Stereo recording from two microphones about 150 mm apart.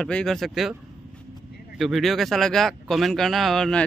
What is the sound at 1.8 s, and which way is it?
A man's voice, centre (ahead or behind).